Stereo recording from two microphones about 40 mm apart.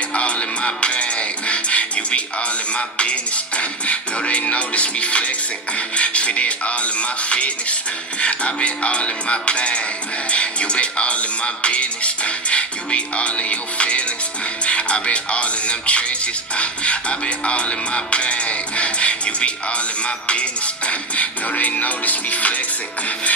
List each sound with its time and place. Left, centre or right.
0.1 s speech: left